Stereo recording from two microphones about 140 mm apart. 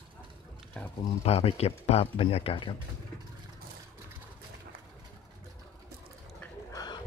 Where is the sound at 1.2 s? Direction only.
45° left (ahead or behind).